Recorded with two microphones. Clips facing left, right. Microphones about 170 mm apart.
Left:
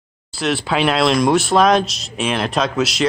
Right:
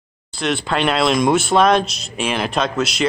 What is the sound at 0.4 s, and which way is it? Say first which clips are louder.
Speech: left 1 dB; 5° left (ahead or behind).